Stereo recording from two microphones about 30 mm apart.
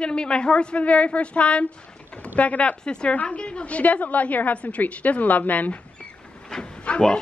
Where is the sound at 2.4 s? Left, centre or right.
Left.